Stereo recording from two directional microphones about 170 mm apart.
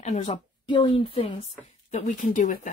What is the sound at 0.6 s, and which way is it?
Speech, 30° left (ahead or behind).